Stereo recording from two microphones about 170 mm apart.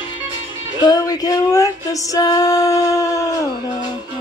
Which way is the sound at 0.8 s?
20° left (ahead or behind).